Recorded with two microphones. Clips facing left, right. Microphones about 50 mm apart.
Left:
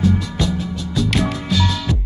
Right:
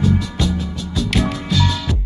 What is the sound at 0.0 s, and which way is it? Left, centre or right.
Music, centre.